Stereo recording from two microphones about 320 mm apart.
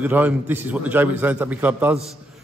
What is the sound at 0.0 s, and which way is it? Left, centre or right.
A man's voice, centre.